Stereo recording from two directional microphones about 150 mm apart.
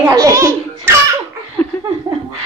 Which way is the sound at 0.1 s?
20° right (ahead or behind).